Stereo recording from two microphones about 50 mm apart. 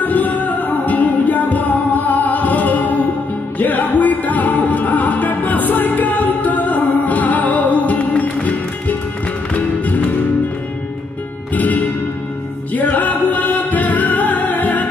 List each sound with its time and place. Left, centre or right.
0.0 s music: left
11.5 s music: left